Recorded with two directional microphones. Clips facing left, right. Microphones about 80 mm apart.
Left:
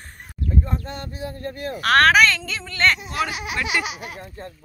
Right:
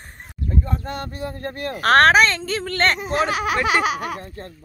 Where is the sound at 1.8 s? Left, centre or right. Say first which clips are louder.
Right 2 dB; right.